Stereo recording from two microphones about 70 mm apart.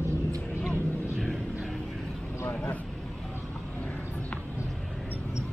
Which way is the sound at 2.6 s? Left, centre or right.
Left.